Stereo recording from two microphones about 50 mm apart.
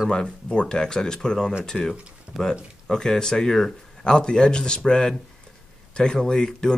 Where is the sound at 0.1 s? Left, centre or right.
Centre.